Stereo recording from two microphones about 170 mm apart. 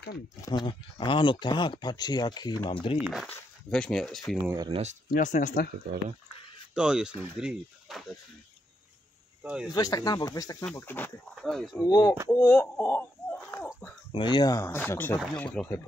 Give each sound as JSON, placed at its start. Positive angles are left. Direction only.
{"t": 0.4, "sound": "speech", "side_deg": 25}
{"t": 3.0, "sound": "speech", "side_deg": -5}
{"t": 4.6, "sound": "speech", "side_deg": -35}
{"t": 5.1, "sound": "speech", "side_deg": 50}
{"t": 6.7, "sound": "speech", "side_deg": -5}
{"t": 9.4, "sound": "speech", "side_deg": -10}
{"t": 9.7, "sound": "speech", "side_deg": 20}
{"t": 10.6, "sound": "speech", "side_deg": 10}
{"t": 11.8, "sound": "speech", "side_deg": 20}
{"t": 14.1, "sound": "speech", "side_deg": 30}